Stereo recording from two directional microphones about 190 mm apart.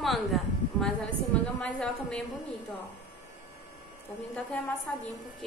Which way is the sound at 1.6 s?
5° left (ahead or behind).